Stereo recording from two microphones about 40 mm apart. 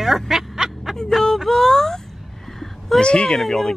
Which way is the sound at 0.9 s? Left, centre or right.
Centre.